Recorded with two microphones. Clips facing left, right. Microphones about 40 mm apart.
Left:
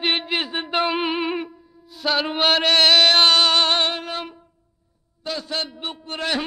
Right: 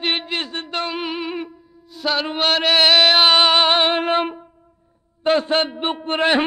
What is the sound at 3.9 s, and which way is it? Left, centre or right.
Music, right.